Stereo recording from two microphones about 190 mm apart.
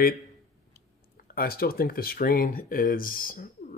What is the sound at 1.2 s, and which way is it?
Speech, 50° left (ahead or behind).